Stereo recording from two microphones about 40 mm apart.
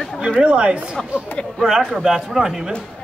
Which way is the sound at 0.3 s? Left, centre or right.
Right.